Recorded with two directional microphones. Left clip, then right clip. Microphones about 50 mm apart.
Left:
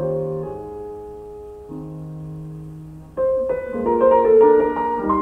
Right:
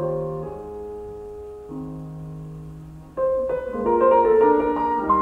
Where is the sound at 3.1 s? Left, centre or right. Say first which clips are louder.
Left 2 dB; centre.